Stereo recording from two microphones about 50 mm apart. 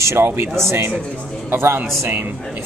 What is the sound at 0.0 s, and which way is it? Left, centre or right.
Speech, right.